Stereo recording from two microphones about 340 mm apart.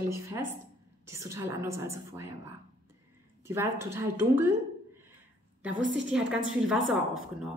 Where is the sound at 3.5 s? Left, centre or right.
Centre.